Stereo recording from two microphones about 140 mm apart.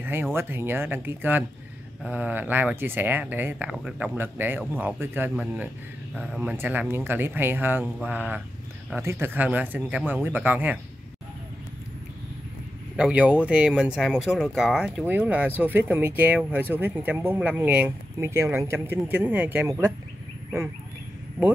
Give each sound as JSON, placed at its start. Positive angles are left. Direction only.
{"t": 0.0, "sound": "speech", "side_deg": -15}
{"t": 6.4, "sound": "speech", "side_deg": -15}
{"t": 12.9, "sound": "speech", "side_deg": -10}